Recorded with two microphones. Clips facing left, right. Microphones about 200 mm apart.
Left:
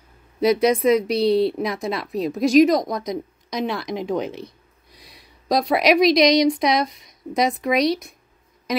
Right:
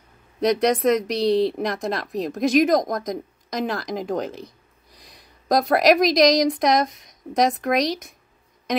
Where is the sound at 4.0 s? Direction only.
40° right (ahead or behind).